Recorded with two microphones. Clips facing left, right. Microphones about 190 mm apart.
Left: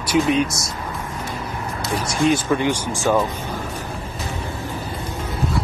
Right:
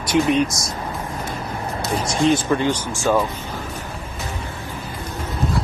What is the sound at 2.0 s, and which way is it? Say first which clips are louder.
Speech: right 1 dB; 25° right (ahead or behind).